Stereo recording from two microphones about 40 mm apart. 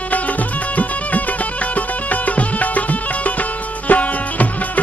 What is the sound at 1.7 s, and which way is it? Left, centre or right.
Music, left.